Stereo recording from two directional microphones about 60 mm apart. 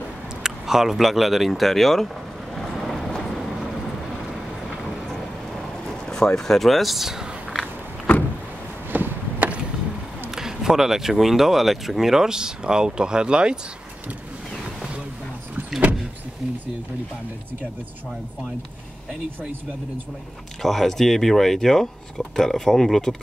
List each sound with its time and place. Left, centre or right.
0.4 s speech: centre
2.5 s vehicle: centre
5.9 s speech: centre
8.9 s a sound: right
10.3 s speech: centre
20.6 s speech: centre